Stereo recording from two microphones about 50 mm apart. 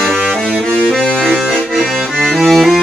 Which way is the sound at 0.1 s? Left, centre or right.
Centre.